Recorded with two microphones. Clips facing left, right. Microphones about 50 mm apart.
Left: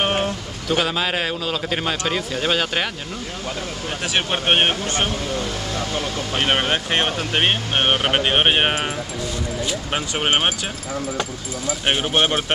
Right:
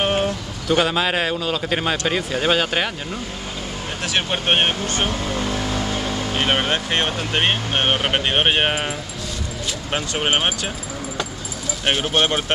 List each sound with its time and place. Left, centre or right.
0.0 s a sound: centre
0.7 s a man's voice: centre
4.3 s speech: centre
5.3 s speech: centre
5.8 s vehicle: centre
6.3 s speech: centre
9.8 s a man's voice: centre
11.8 s a man's voice: centre